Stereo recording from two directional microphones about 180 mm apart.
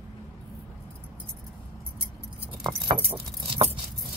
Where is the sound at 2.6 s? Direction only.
30° right (ahead or behind).